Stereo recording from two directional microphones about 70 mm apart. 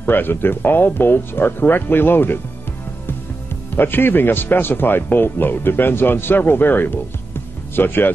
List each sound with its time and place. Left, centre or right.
0.0 s a man's voice: left
3.7 s a man's voice: left